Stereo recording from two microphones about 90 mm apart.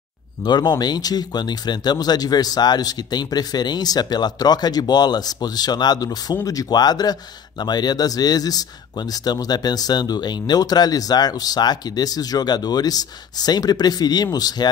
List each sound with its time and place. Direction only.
0.4 s speech: 55° left (ahead or behind)